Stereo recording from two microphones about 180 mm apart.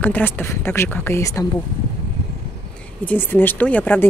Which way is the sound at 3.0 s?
10° left (ahead or behind).